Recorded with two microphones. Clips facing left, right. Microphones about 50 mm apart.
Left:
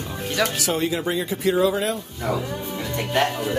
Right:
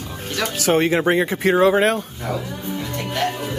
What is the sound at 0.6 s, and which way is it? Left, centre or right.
Speech, right.